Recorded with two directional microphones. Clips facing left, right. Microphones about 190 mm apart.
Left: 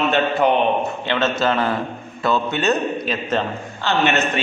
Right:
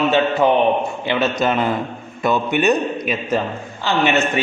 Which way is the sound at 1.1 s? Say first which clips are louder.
Right 1 dB; 15° right (ahead or behind).